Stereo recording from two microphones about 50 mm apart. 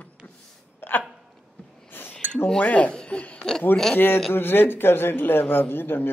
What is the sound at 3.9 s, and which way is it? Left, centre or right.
A man's voice, left.